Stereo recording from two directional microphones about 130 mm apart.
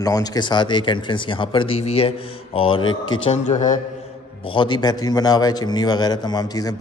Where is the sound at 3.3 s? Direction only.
65° left (ahead or behind).